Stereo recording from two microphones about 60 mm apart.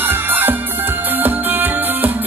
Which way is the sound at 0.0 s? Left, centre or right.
Right.